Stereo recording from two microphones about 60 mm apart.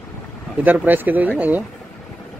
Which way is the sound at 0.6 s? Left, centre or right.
Right.